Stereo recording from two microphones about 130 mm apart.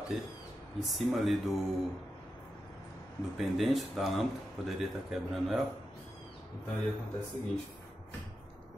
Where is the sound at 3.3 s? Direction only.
Centre (ahead or behind).